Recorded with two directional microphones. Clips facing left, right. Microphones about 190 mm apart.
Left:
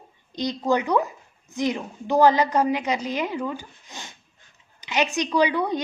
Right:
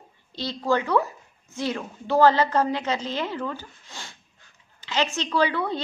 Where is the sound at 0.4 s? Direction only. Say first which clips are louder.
Left 2 dB; 15° left (ahead or behind).